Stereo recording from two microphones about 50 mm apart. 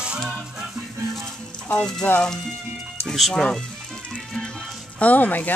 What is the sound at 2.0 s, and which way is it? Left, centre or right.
Speech, left.